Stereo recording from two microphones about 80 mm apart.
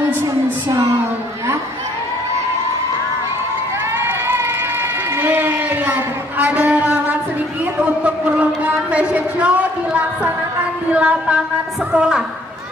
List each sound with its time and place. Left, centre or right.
4.0 s run: right
5.1 s a sound: right
11.9 s a woman's voice: centre